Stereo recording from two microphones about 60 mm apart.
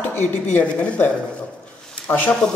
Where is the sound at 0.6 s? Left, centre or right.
Left.